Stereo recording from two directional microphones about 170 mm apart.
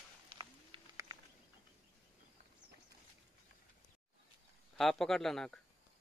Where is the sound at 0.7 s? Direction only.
30° right (ahead or behind).